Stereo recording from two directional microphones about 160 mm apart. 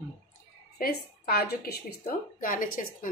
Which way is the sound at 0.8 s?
70° left (ahead or behind).